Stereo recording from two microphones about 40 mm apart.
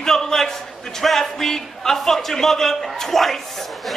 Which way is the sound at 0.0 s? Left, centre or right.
Centre.